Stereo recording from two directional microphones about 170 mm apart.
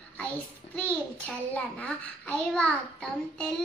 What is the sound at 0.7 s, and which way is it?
A child's voice, 10° left (ahead or behind).